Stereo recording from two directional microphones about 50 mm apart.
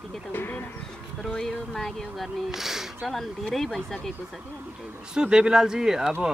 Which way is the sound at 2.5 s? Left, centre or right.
Centre.